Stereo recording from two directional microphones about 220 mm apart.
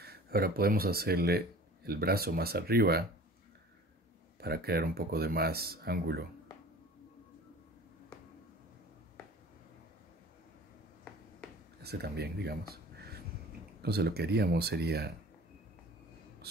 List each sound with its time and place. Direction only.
0.0 s speech: 45° right (ahead or behind)
4.4 s speech: 45° right (ahead or behind)
11.8 s speech: 45° right (ahead or behind)